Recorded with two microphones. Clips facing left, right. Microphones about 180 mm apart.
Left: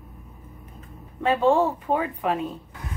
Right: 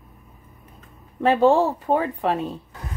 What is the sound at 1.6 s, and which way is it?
Speech, 40° right (ahead or behind).